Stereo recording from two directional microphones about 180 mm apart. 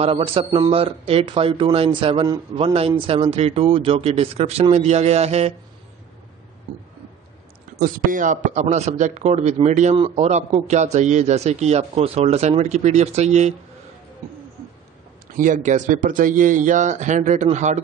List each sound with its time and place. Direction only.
0.0 s a man's voice: 30° right (ahead or behind)
7.8 s a man's voice: 50° right (ahead or behind)
15.3 s speech: 45° right (ahead or behind)